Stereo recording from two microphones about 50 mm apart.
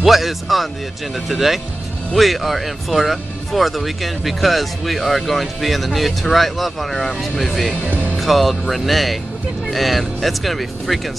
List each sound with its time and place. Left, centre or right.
0.0 s speech: centre
7.8 s speech: left
8.2 s speech: centre